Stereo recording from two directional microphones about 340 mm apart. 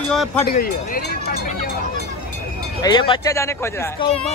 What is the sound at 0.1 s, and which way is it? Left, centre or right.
Speech, centre.